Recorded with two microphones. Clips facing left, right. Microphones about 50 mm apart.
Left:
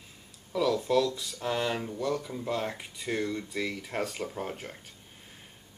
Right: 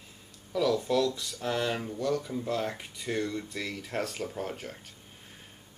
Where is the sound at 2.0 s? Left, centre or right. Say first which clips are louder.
Right 1 dB; centre.